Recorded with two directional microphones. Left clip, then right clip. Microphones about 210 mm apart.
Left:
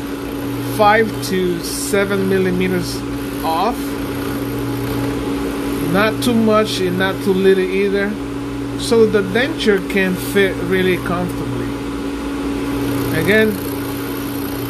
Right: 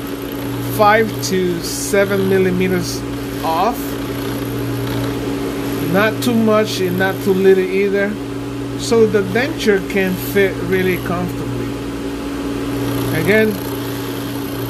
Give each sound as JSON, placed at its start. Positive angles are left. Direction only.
{"t": 0.7, "sound": "speech", "side_deg": -5}
{"t": 5.9, "sound": "speech", "side_deg": 0}
{"t": 13.1, "sound": "speech", "side_deg": -5}